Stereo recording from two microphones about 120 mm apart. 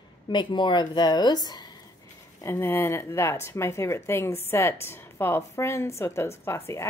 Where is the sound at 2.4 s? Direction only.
20° left (ahead or behind).